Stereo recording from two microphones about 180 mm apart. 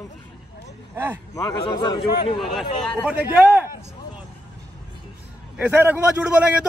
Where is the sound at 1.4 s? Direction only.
25° left (ahead or behind).